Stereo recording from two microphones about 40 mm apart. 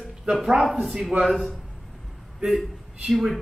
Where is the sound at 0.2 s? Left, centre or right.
Centre.